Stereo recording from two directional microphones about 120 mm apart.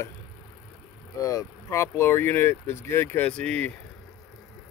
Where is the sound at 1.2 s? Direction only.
30° left (ahead or behind); by 3.8 s 10° left (ahead or behind).